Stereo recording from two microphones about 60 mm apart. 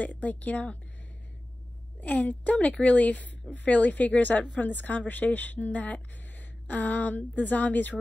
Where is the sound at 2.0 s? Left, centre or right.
Left.